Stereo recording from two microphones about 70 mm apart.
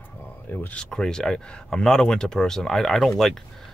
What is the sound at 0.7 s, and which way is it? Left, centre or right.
Speech, centre.